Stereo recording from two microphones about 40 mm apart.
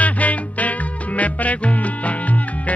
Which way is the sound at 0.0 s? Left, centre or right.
Left.